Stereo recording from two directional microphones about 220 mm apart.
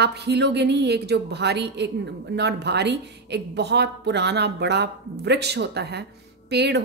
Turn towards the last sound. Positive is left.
turn(degrees=-50)  # may be behind; listen again after turning